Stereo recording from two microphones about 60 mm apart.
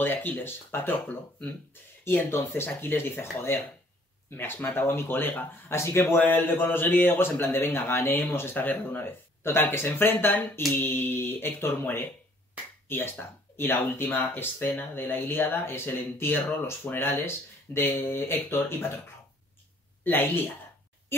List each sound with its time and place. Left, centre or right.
0.0 s speech: left
2.0 s speech: left
5.8 s speech: left
20.0 s a woman's voice: left